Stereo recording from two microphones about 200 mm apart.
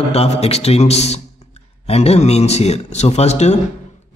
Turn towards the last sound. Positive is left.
turn(degrees=35)  # may be behind; listen again after turning